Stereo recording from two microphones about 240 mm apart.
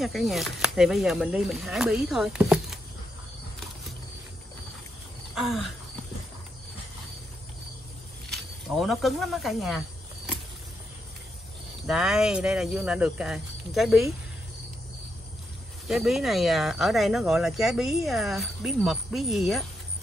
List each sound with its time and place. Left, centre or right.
0.0 s speech: centre
5.3 s a sound: centre
8.3 s speech: centre
11.8 s speech: centre
15.9 s speech: centre